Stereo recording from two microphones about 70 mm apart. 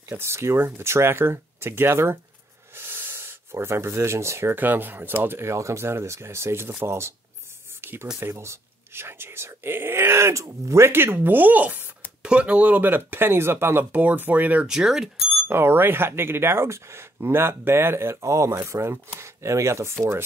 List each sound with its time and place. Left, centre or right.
0.1 s speech: right
7.8 s a sound: right
8.2 s speech: right
14.7 s speech: centre
15.4 s speech: right